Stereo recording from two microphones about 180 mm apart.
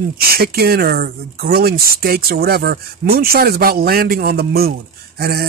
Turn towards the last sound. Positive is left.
turn(degrees=-60)  # may be behind; listen again after turning